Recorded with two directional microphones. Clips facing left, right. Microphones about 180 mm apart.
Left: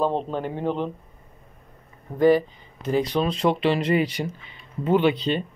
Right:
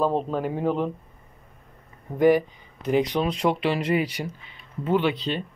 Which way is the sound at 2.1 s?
15° right (ahead or behind).